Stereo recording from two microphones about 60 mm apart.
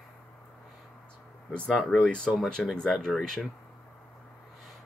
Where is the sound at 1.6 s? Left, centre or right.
Centre.